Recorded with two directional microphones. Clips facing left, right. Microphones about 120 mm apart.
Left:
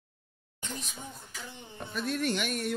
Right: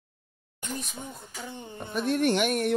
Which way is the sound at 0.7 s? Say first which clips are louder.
Right 5 dB; 50° right (ahead or behind).